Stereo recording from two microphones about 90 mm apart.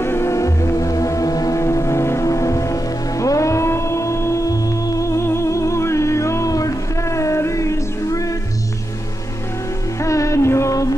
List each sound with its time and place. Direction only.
0.0 s music: 30° left (ahead or behind)
9.9 s music: 35° left (ahead or behind)